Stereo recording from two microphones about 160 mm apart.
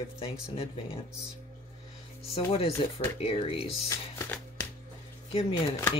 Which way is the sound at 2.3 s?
35° left (ahead or behind).